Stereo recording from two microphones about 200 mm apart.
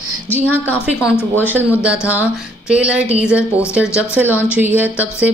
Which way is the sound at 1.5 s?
5° right (ahead or behind).